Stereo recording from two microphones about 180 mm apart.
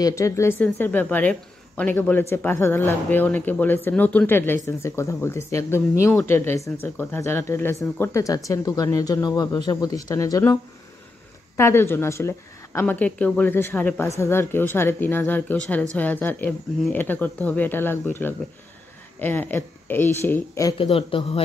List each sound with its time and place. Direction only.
0.0 s a woman's voice: 15° left (ahead or behind)
19.1 s a woman's voice: 10° left (ahead or behind)
20.7 s speech: 30° left (ahead or behind)